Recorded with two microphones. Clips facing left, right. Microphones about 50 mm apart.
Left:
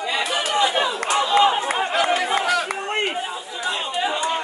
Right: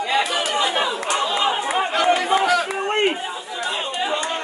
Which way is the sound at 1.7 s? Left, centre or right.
Centre.